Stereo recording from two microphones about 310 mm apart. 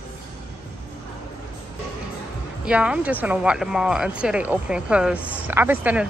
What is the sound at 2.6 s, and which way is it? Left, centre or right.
Speech, centre.